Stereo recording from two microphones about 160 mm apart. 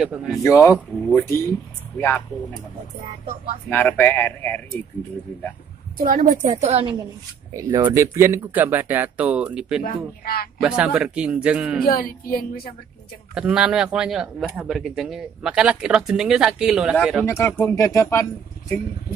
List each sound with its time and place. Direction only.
0.0 s speech: 5° right (ahead or behind)
0.4 s speech: 20° left (ahead or behind)
3.7 s speech: 10° left (ahead or behind)
5.9 s a woman's voice: 60° right (ahead or behind)
6.6 s a woman's voice: 35° right (ahead or behind)
7.5 s speech: 25° right (ahead or behind); by 9.8 s 5° right (ahead or behind)
9.8 s speech: 70° left (ahead or behind)
10.6 s speech: 5° right (ahead or behind)
11.8 s speech: 65° left (ahead or behind)
13.3 s speech: 5° right (ahead or behind)
17.2 s speech: 15° left (ahead or behind)